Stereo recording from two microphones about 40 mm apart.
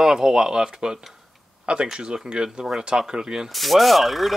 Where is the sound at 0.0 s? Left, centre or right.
Centre.